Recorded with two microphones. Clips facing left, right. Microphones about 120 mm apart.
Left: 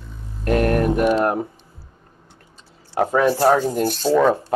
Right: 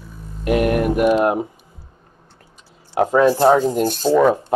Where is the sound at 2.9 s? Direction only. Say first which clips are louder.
Right 3 dB; 15° right (ahead or behind).